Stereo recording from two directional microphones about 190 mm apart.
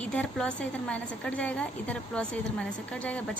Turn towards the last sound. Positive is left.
turn(degrees=5)  # may be behind; listen again after turning